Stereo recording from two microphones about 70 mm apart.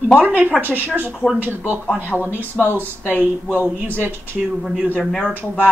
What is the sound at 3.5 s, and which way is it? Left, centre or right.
Speech, right.